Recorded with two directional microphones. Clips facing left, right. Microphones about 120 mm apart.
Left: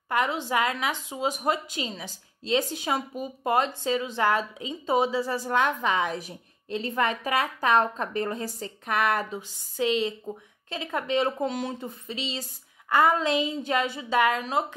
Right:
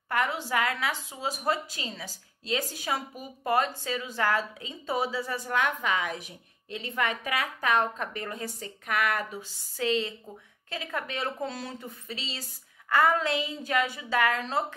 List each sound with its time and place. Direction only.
0.1 s a woman's voice: 20° left (ahead or behind)
9.4 s a woman's voice: 15° left (ahead or behind)